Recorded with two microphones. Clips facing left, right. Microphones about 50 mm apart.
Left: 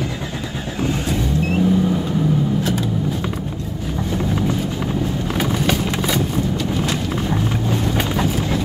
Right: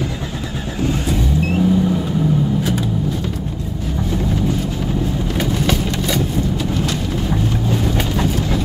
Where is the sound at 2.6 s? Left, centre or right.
Centre.